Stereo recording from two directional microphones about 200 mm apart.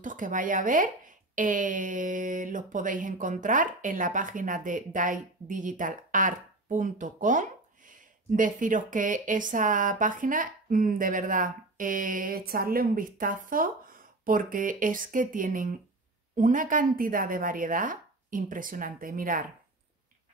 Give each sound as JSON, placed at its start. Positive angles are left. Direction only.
{"t": 0.0, "sound": "speech", "side_deg": -40}